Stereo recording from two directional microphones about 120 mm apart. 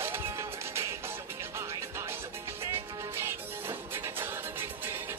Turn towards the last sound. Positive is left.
turn(degrees=-20)  # may be behind; listen again after turning